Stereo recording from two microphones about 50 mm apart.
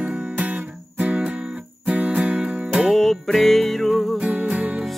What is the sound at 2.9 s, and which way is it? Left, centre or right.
Music, centre.